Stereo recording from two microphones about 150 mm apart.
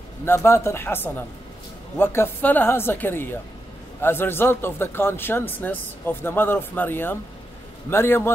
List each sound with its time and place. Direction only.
0.2 s a man's voice: 15° left (ahead or behind)